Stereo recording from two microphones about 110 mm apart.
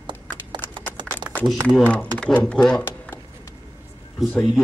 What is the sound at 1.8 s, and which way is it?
A man's voice, 10° left (ahead or behind).